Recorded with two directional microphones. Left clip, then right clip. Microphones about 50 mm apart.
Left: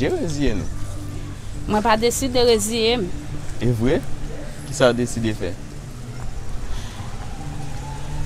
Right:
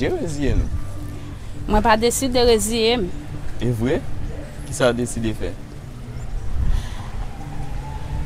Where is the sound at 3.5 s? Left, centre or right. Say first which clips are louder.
Left 1 dB; centre.